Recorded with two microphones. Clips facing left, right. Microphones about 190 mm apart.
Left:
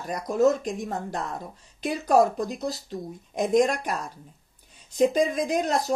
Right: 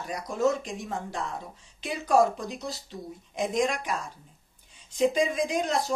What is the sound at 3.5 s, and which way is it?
Speech, 45° left (ahead or behind).